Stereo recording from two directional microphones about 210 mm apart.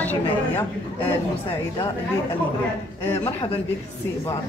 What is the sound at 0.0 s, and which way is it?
Speech, 10° left (ahead or behind).